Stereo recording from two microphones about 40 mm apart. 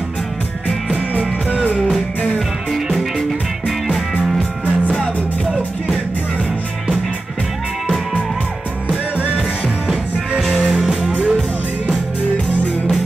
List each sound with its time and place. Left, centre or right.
1.1 s music: right
10.7 s music: centre